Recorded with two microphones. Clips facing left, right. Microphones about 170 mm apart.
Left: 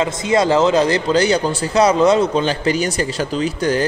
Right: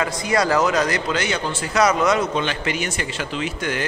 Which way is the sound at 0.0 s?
25° left (ahead or behind).